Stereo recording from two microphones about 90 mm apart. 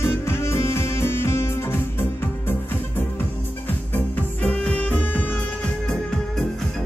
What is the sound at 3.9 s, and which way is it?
Music, 15° left (ahead or behind).